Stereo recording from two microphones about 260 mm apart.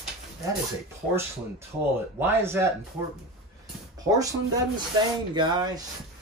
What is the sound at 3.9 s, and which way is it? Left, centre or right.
Speech, centre.